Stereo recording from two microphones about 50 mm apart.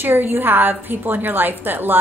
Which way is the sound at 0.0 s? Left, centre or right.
Right.